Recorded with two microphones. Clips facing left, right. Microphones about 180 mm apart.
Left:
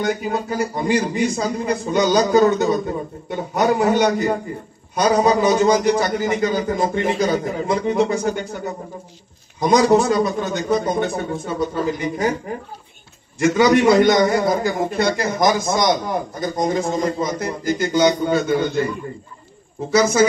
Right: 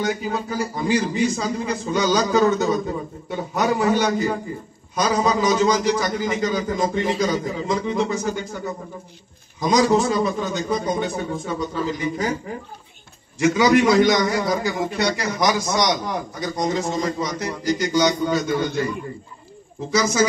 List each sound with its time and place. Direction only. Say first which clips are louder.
0.2 s a man's voice: left 3 dB; 60° left (ahead or behind)
2.4 s a man's voice: left 2 dB; centre (ahead or behind)
3.6 s a man's voice: left 3 dB; 60° left (ahead or behind)
9.6 s a man's voice: left 3 dB; 60° left (ahead or behind)
13.4 s a man's voice: left 2 dB; 55° left (ahead or behind)
19.9 s a man's voice: left 4 dB; 55° left (ahead or behind)